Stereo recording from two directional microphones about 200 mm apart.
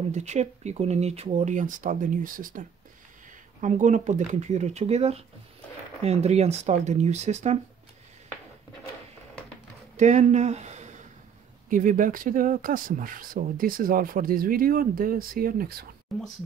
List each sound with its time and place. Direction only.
0.1 s speech: 35° right (ahead or behind)
3.6 s speech: 40° right (ahead or behind)
9.9 s speech: 35° right (ahead or behind)
16.1 s speech: centre (ahead or behind)